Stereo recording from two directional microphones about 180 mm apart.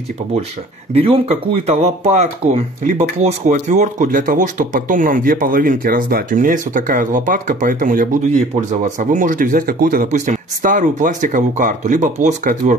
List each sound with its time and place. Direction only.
0.9 s speech: 35° right (ahead or behind)